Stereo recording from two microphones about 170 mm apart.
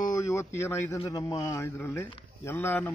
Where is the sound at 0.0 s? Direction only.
20° left (ahead or behind).